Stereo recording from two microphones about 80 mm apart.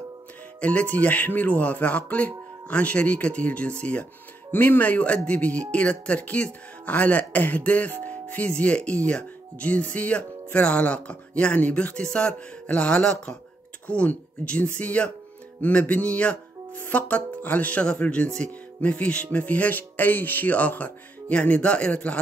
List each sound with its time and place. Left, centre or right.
0.6 s speech: centre